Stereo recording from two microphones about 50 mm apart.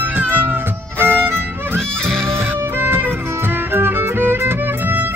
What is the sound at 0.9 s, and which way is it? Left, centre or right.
Violin, right.